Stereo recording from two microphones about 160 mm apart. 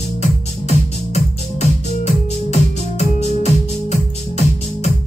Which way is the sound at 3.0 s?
45° left (ahead or behind).